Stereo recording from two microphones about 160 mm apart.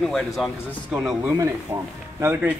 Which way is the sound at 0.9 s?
10° right (ahead or behind).